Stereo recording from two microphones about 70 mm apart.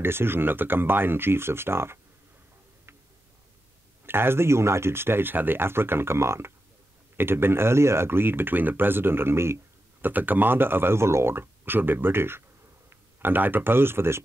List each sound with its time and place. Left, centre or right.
0.0 s speech: right
4.0 s speech: right
10.0 s speech: right